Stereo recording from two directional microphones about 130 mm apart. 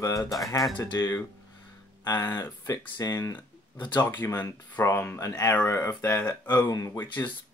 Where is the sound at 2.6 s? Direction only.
30° left (ahead or behind).